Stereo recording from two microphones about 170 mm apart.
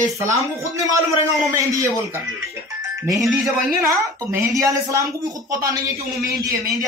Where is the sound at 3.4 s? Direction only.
20° right (ahead or behind).